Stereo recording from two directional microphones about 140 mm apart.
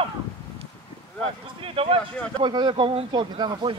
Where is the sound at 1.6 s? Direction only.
40° right (ahead or behind).